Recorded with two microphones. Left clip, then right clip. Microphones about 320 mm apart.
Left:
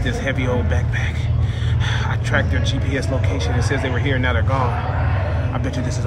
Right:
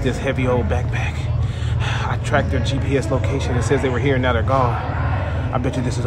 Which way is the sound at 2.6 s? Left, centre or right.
Right.